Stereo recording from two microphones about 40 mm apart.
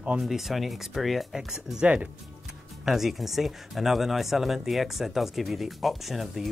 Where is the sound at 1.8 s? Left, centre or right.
Right.